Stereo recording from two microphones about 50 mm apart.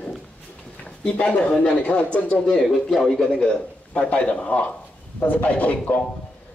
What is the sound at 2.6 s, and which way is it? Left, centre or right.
A man's voice, centre.